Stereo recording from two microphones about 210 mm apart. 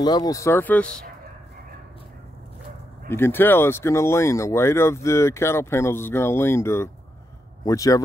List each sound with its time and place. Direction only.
0.0 s speech: 20° left (ahead or behind)
3.1 s speech: 10° left (ahead or behind)